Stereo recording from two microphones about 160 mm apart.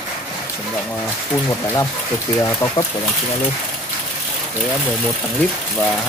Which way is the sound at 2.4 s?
20° left (ahead or behind).